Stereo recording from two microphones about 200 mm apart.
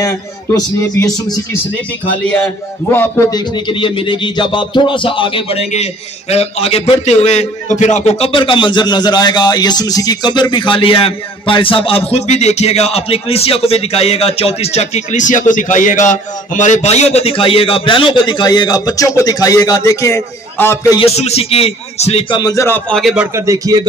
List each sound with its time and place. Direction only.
0.0 s a man's voice: 15° left (ahead or behind)
21.0 s a man's voice: 30° left (ahead or behind); by 23.2 s centre (ahead or behind)
23.3 s speech: 15° right (ahead or behind)